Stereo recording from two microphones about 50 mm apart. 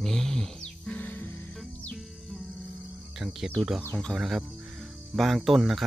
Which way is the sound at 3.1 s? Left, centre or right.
Centre.